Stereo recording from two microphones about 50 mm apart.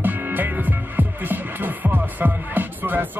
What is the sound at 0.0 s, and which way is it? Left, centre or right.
Music, right.